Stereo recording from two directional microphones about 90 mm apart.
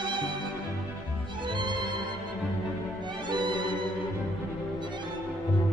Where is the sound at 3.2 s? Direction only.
60° right (ahead or behind).